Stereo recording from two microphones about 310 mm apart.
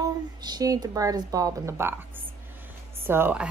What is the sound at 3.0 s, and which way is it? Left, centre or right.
Speech, centre.